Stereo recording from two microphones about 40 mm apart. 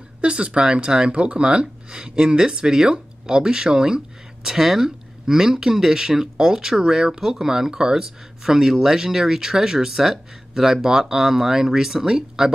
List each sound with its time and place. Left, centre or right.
0.2 s speech: right